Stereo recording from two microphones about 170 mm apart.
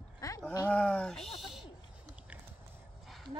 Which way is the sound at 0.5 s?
10° left (ahead or behind).